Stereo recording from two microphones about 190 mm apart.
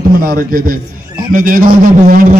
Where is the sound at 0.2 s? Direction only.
50° right (ahead or behind).